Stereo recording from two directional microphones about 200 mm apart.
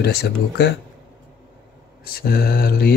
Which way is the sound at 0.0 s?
55° left (ahead or behind).